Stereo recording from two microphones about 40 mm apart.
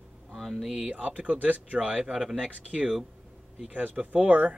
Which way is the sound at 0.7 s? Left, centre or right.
Right.